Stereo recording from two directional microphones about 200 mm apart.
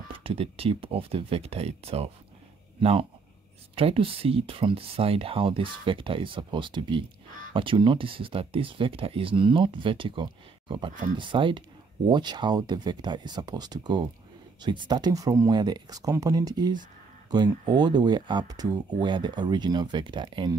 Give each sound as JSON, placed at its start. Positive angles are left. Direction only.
{"t": 0.1, "sound": "speech", "side_deg": -30}